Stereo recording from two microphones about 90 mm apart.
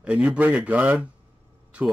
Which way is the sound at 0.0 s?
15° right (ahead or behind).